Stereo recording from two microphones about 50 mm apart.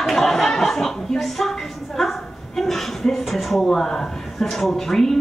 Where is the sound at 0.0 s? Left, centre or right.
Centre.